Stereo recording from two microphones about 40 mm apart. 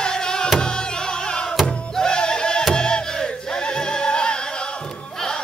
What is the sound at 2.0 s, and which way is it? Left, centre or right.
Music, centre.